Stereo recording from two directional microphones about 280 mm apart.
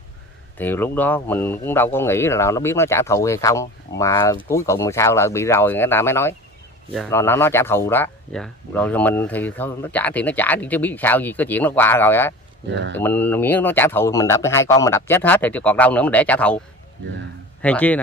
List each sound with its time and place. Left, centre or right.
0.6 s speech: centre
12.6 s speech: right
12.9 s a man's voice: centre